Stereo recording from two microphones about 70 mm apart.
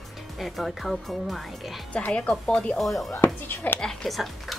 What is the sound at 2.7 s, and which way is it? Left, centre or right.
Speech, centre.